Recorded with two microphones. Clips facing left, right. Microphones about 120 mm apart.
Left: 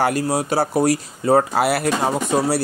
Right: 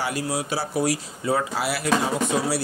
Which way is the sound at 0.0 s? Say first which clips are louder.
Left 7 dB; 50° left (ahead or behind).